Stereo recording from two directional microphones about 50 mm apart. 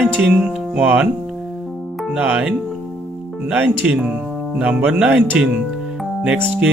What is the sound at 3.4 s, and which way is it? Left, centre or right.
Speech, right.